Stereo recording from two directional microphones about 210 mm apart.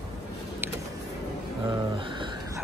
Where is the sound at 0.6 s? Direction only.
10° right (ahead or behind).